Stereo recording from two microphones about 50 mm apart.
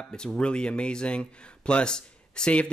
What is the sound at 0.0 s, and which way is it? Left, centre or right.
Speech, centre.